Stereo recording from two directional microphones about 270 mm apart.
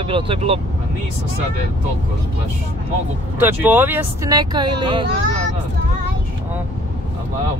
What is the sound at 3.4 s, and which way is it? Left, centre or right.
Speech, centre.